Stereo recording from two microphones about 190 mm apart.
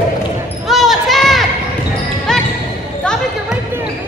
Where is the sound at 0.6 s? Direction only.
Centre (ahead or behind).